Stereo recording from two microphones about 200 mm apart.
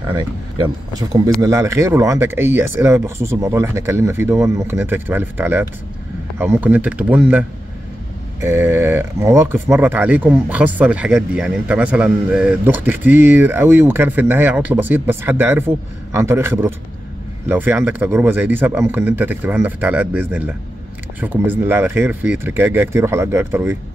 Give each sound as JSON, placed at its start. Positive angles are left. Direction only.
{"t": 0.1, "sound": "speech", "side_deg": -20}